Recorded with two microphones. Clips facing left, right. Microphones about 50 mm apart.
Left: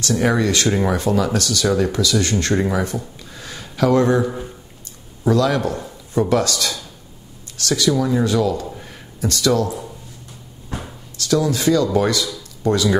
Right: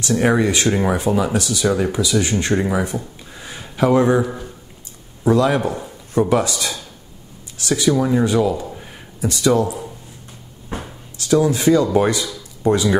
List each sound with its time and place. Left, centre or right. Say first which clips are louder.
0.0 s speech: right 2 dB; centre
8.6 s a sound: even; centre
9.2 s speech: right 2 dB; centre